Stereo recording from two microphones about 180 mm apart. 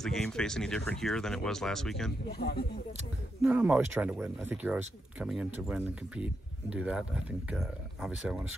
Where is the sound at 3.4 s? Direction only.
5° right (ahead or behind).